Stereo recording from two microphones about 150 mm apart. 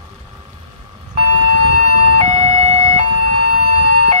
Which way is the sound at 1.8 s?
50° right (ahead or behind).